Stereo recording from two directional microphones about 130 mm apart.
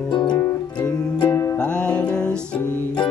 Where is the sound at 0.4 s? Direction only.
20° left (ahead or behind).